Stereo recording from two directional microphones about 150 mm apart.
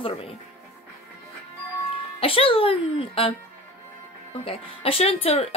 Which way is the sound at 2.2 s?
40° left (ahead or behind).